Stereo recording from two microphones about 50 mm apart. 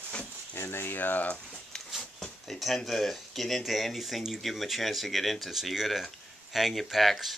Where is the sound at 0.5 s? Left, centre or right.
Left.